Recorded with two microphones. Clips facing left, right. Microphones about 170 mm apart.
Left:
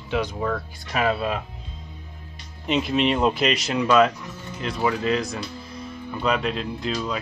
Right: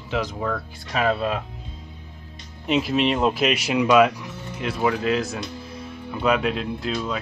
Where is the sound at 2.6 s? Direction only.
Centre (ahead or behind).